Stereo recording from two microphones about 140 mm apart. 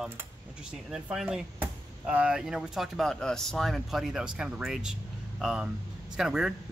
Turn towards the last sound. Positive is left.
turn(degrees=-5)  # may be behind; listen again after turning